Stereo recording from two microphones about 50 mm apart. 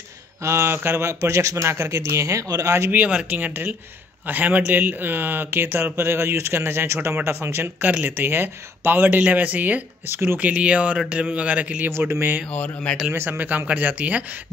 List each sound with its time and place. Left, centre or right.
0.4 s speech: right
0.7 s speech: right
2.9 s a man's voice: right
7.8 s speech: right
8.2 s speech: right
9.2 s speech: right
10.0 s speech: right
10.4 s a man's voice: right
12.1 s speech: right
12.4 s speech: left
13.3 s speech: right